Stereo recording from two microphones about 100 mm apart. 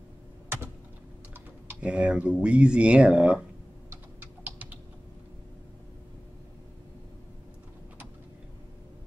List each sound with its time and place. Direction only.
1.7 s speech: 10° right (ahead or behind)
4.5 s typing: 15° right (ahead or behind)